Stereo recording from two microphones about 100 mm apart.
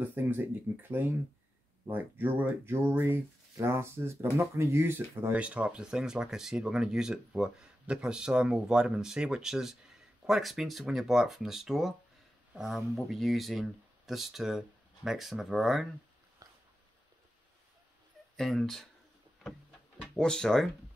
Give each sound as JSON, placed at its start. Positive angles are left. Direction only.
{"t": 0.0, "sound": "speech", "side_deg": -20}
{"t": 5.3, "sound": "speech", "side_deg": -15}
{"t": 18.3, "sound": "speech", "side_deg": 5}
{"t": 20.2, "sound": "speech", "side_deg": 5}